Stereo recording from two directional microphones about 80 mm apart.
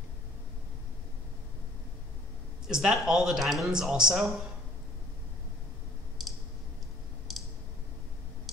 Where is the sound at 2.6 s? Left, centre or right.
Centre.